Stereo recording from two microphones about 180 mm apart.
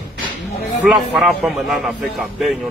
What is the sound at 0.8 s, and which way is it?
A man's voice, centre (ahead or behind).